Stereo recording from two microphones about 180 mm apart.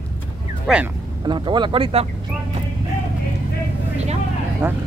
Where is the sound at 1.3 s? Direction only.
25° right (ahead or behind).